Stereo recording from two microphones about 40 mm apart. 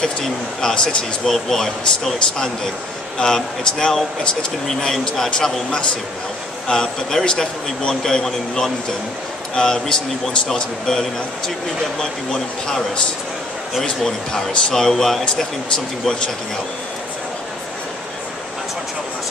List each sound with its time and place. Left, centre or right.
0.0 s speech: centre
2.1 s speech: left
4.6 s speech: centre
6.7 s speech: centre
9.6 s speech: centre
14.0 s speech: centre